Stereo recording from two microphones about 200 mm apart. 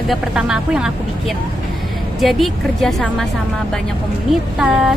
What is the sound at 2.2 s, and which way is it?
Speech, centre (ahead or behind).